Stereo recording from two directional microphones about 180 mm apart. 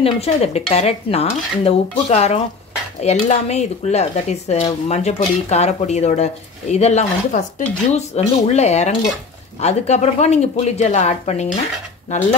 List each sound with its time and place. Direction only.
0.0 s speech: 35° left (ahead or behind)